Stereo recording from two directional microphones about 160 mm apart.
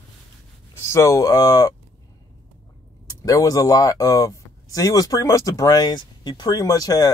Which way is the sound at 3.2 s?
20° left (ahead or behind).